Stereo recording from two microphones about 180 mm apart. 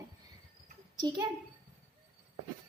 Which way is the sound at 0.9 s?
25° right (ahead or behind).